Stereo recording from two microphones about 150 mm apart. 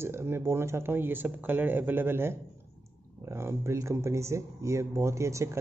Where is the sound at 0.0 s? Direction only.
15° right (ahead or behind).